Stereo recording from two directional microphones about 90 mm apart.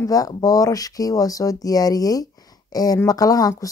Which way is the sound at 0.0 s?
40° left (ahead or behind).